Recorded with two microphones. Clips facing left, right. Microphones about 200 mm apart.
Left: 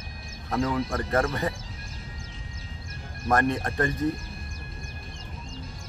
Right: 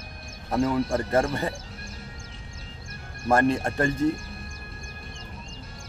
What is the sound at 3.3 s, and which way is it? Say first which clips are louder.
Speech: right 3 dB; 30° right (ahead or behind).